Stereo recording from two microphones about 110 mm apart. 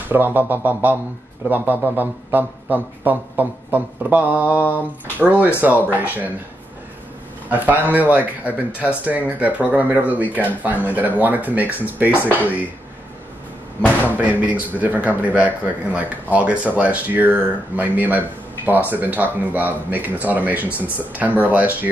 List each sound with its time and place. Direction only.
0.1 s a man's voice: 15° right (ahead or behind)
4.6 s a sound: 15° left (ahead or behind)
5.2 s a man's voice: 15° right (ahead or behind)
7.4 s a man's voice: 15° right (ahead or behind)
13.7 s a sound: 15° left (ahead or behind)
14.1 s a man's voice: 15° right (ahead or behind)